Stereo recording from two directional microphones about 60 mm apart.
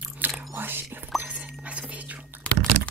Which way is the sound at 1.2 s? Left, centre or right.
Right.